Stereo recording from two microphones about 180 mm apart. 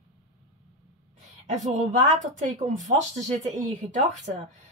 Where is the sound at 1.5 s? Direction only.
45° right (ahead or behind).